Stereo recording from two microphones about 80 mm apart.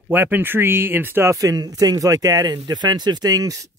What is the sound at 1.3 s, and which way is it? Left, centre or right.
Speech, right.